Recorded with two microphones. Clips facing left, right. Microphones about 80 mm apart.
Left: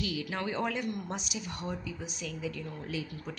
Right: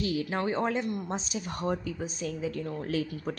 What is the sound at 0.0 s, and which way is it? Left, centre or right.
Speech, right.